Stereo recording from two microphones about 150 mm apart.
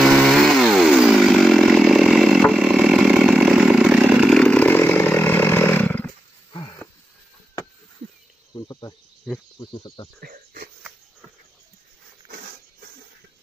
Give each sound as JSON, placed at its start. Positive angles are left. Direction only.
{"t": 0.0, "sound": "chainsaw", "side_deg": 0}
{"t": 4.4, "sound": "chainsaw", "side_deg": 10}
{"t": 6.5, "sound": "a sound", "side_deg": 30}
{"t": 8.5, "sound": "cricket", "side_deg": 25}
{"t": 9.3, "sound": "cricket", "side_deg": 0}
{"t": 9.6, "sound": "cricket", "side_deg": 35}
{"t": 10.2, "sound": "a sound", "side_deg": -85}